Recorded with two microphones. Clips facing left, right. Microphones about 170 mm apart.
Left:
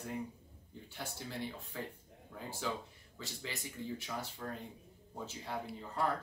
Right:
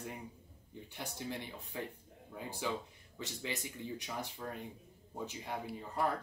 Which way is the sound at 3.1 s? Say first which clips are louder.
Right 4 dB; 20° right (ahead or behind).